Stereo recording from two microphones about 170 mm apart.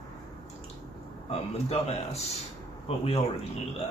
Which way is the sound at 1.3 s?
40° left (ahead or behind).